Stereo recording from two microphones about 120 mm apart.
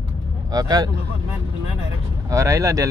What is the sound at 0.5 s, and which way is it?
Speech, 30° right (ahead or behind).